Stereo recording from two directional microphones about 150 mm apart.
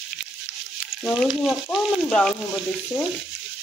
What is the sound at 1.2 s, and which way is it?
Speech, centre (ahead or behind).